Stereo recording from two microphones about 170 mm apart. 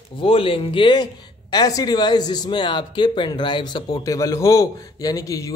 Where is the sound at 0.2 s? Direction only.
30° left (ahead or behind).